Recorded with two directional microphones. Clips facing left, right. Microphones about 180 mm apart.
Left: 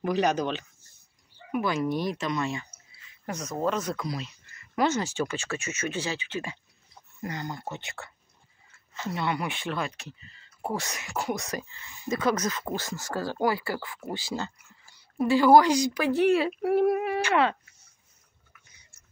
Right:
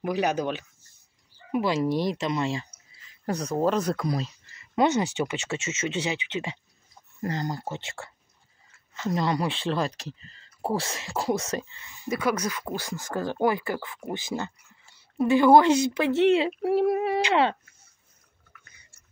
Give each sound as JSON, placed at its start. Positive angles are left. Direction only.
{"t": 0.0, "sound": "speech", "side_deg": -10}
{"t": 1.5, "sound": "speech", "side_deg": -25}
{"t": 4.6, "sound": "speech", "side_deg": -20}
{"t": 7.2, "sound": "speech", "side_deg": -35}
{"t": 9.1, "sound": "speech", "side_deg": -35}
{"t": 12.1, "sound": "speech", "side_deg": -10}